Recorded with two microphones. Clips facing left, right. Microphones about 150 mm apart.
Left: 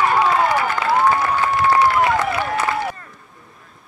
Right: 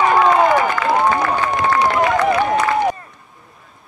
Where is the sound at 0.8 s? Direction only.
20° right (ahead or behind).